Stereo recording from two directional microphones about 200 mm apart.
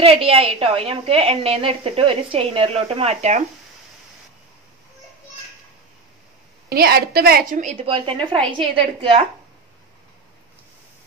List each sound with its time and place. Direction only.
0.0 s a woman's voice: 30° right (ahead or behind)
6.7 s a woman's voice: 50° right (ahead or behind)
7.7 s a woman's voice: 25° right (ahead or behind)